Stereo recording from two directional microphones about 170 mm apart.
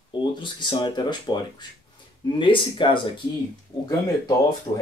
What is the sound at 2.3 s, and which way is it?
Speech, 30° left (ahead or behind).